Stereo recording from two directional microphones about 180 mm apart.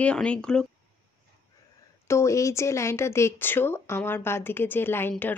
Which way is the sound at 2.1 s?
15° left (ahead or behind).